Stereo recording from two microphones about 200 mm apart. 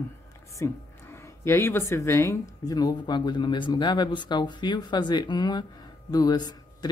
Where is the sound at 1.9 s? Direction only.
15° left (ahead or behind).